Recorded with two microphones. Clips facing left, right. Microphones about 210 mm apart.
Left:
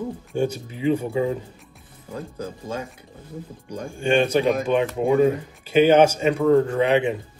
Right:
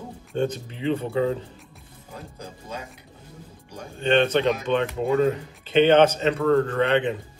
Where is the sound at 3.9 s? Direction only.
10° left (ahead or behind).